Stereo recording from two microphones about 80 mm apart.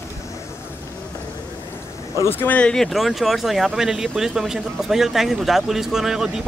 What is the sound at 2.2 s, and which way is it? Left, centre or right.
Speech, left.